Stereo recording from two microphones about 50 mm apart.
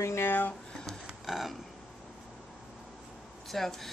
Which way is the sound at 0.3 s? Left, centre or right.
Left.